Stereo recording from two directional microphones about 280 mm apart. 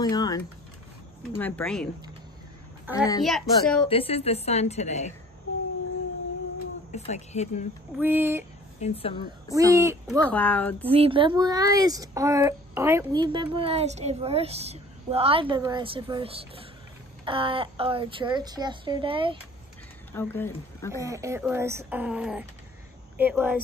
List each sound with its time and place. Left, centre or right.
0.0 s a sound: centre
1.3 s a child's voice: centre
2.9 s a child's voice: centre
3.9 s a woman's voice: left
6.9 s a woman's voice: left
8.0 s speech: centre
8.7 s a woman's voice: left
9.5 s speech: centre
10.2 s a child's voice: centre
10.9 s a woman's voice: centre
20.1 s speech: centre
21.0 s speech: centre